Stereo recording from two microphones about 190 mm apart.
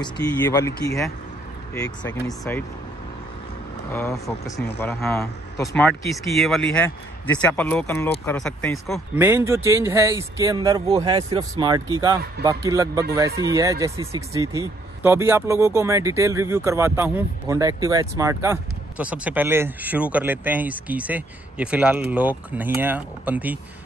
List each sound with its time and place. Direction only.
0.4 s speech: 15° left (ahead or behind)
3.9 s speech: 15° left (ahead or behind)
5.6 s speech: centre (ahead or behind)
9.2 s speech: 10° right (ahead or behind)